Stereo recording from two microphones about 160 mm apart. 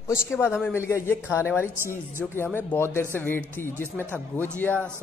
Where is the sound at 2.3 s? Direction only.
15° left (ahead or behind).